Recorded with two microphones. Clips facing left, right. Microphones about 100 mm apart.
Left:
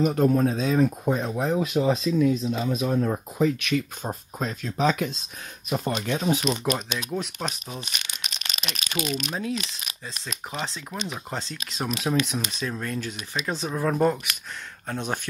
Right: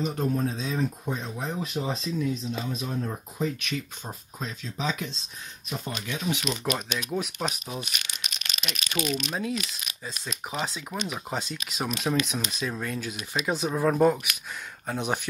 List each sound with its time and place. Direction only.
0.0 s speech: 70° left (ahead or behind)
1.3 s speech: 85° left
4.0 s speech: 45° left (ahead or behind); by 6.1 s 60° left (ahead or behind)
6.1 s speech: 35° left (ahead or behind)
7.0 s speech: 5° right (ahead or behind)
8.2 s a sound: 35° left (ahead or behind)
9.3 s speech: centre (ahead or behind)